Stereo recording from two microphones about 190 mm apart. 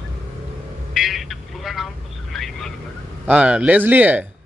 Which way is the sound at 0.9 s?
Centre (ahead or behind).